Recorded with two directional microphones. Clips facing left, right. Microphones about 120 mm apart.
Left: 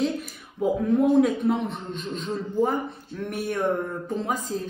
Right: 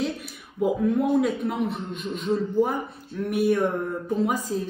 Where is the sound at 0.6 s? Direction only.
Centre (ahead or behind).